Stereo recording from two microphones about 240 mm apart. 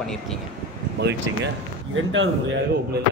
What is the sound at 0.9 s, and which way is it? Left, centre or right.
Speech, right.